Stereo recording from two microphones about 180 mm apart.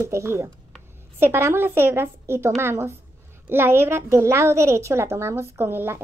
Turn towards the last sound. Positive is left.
turn(degrees=-10)  # may be behind; listen again after turning